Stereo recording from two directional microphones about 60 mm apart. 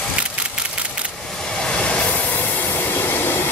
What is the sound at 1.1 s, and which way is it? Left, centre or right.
Train, centre.